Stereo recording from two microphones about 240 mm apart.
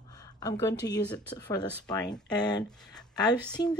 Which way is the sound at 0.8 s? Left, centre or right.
Centre.